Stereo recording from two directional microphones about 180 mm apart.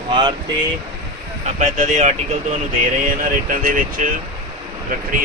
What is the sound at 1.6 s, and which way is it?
Speech, 40° right (ahead or behind).